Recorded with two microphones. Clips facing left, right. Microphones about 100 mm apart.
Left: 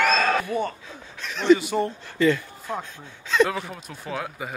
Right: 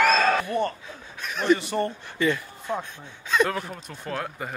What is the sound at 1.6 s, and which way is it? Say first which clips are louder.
Speech: left 2 dB; 5° left (ahead or behind).